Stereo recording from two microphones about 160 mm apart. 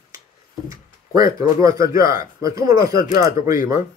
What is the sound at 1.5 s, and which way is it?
Speech, 20° right (ahead or behind).